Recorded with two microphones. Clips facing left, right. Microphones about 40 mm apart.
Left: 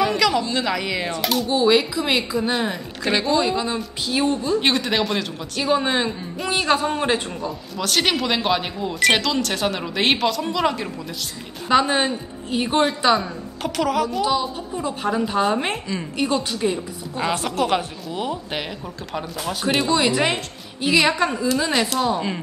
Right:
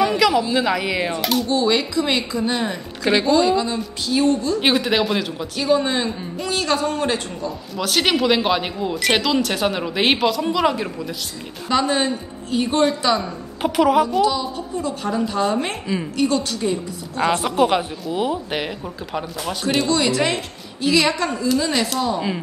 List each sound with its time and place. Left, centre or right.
0.0 s speech: centre
3.3 s a woman's voice: centre
4.6 s speech: centre
5.6 s a woman's voice: centre
7.7 s speech: centre
11.7 s a woman's voice: centre
13.6 s speech: centre
14.2 s a woman's voice: centre
17.2 s speech: centre
19.6 s a woman's voice: centre